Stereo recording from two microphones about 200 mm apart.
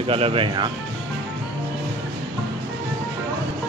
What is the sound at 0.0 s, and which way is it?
Speech, 25° right (ahead or behind).